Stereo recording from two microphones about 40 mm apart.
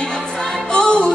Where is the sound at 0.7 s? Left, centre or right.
Left.